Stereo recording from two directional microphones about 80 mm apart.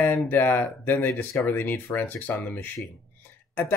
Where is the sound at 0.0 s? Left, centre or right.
Left.